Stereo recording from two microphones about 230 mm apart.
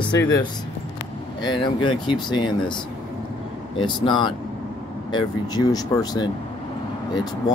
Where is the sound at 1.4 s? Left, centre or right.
Left.